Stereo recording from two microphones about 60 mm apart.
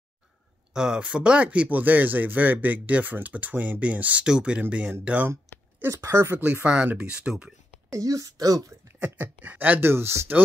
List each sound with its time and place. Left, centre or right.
0.7 s speech: centre
5.9 s speech: right
6.3 s speech: right
6.6 s speech: centre
8.0 s speech: right
9.0 s speech: right
9.8 s speech: right